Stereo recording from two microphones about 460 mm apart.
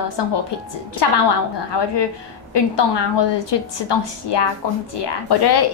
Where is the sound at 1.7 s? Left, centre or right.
Left.